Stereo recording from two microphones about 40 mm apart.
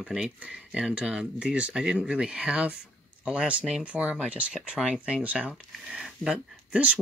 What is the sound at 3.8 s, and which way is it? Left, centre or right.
Speech, right.